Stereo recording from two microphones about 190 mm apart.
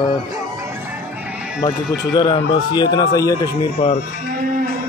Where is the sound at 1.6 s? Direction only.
20° left (ahead or behind).